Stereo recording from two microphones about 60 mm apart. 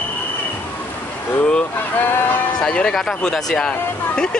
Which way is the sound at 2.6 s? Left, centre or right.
Centre.